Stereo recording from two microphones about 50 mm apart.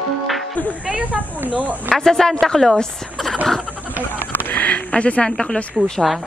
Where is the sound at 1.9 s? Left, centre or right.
Centre.